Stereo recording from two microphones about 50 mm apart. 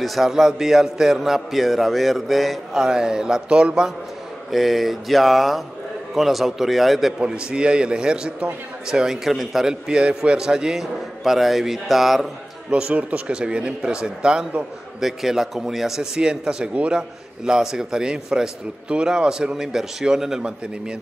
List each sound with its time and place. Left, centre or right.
0.0 s a man's voice: centre
2.8 s a man's voice: centre
4.5 s a man's voice: centre
7.2 s a man's voice: centre
9.8 s a man's voice: right; by 12.7 s centre
12.9 s a man's voice: right
15.0 s a man's voice: centre
16.2 s a man's voice: centre